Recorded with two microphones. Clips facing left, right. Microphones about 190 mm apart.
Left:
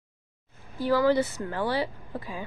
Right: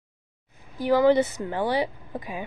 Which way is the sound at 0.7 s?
15° right (ahead or behind).